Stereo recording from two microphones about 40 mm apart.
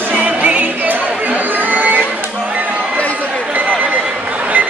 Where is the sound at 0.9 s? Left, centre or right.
Right.